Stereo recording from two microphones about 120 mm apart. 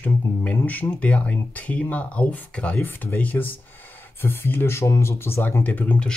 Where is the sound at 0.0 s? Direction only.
15° left (ahead or behind).